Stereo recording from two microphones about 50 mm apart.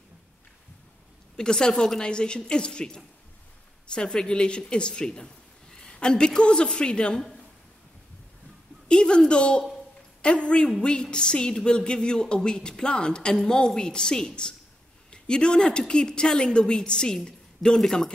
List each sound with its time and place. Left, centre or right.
1.3 s a woman's voice: centre
8.8 s a woman's voice: centre